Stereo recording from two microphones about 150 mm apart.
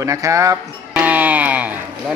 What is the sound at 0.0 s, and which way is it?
Music, 20° right (ahead or behind).